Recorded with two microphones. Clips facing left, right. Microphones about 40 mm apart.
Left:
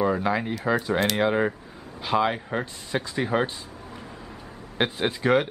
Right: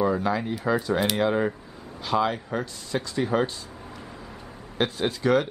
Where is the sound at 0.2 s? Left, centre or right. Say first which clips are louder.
Left 1 dB; left.